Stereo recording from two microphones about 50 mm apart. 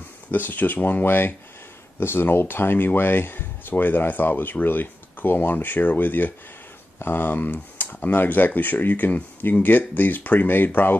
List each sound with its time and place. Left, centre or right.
0.3 s speech: left